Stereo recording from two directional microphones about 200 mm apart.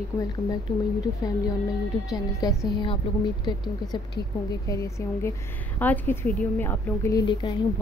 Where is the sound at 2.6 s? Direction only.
20° left (ahead or behind).